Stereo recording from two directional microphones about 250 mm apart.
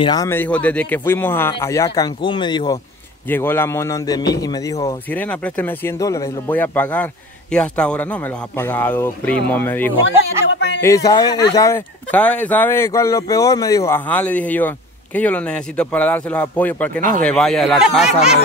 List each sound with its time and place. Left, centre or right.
0.0 s speech: centre
10.4 s speech: left
10.8 s speech: centre